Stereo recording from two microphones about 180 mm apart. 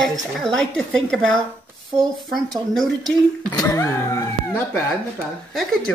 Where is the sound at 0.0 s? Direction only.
Centre (ahead or behind).